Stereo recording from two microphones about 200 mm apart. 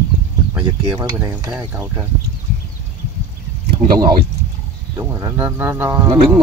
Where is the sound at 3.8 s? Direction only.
35° right (ahead or behind).